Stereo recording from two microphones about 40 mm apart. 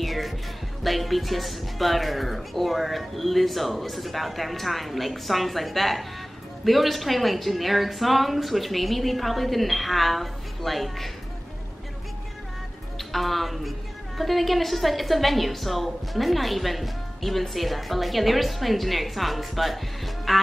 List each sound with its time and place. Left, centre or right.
0.0 s music: centre
0.8 s a woman's voice: centre
13.1 s a woman's voice: centre